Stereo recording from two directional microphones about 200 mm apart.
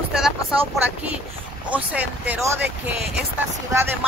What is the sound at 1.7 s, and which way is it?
Speech, 5° right (ahead or behind).